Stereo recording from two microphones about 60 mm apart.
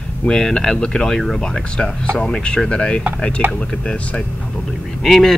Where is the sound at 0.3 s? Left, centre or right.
Centre.